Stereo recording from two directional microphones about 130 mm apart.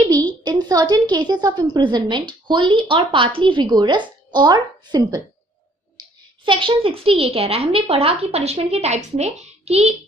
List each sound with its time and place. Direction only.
0.1 s a woman's voice: 35° right (ahead or behind); by 9.9 s 55° right (ahead or behind)